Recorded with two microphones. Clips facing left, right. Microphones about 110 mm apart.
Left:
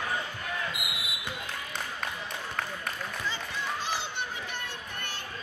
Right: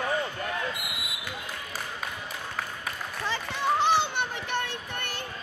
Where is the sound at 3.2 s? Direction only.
65° right (ahead or behind).